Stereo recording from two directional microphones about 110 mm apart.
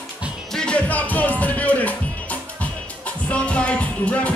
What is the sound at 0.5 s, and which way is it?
Music, 10° left (ahead or behind).